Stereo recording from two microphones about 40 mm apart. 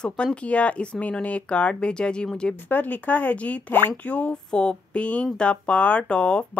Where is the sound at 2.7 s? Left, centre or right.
Left.